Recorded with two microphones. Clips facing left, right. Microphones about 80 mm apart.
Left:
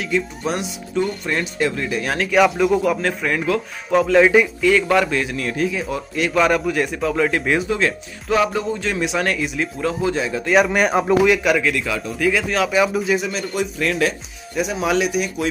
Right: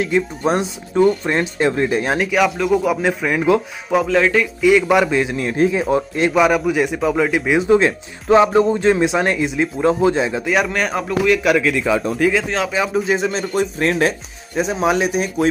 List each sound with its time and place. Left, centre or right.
0.4 s speech: right
2.3 s a man's voice: centre
4.2 s speech: centre
4.6 s speech: centre; by 6.3 s right
6.3 s a man's voice: centre
7.6 s speech: right
10.4 s speech: centre
11.3 s speech: centre
11.7 s speech: right